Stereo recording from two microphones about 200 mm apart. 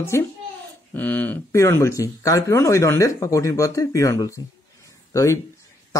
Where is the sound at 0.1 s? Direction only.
15° left (ahead or behind).